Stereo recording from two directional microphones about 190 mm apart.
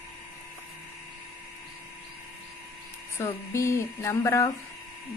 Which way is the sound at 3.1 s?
15° left (ahead or behind).